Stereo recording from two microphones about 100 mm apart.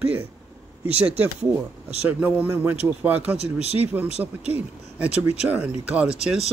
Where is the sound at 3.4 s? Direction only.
90° right.